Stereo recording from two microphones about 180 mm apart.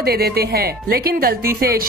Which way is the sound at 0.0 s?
60° right (ahead or behind).